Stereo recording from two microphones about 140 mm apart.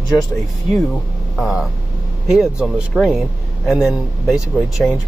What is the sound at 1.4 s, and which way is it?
A man's voice, 5° right (ahead or behind).